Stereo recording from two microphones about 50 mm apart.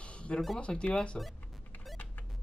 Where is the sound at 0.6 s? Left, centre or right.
Left.